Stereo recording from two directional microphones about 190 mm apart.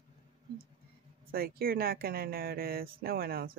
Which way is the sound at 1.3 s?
50° right (ahead or behind).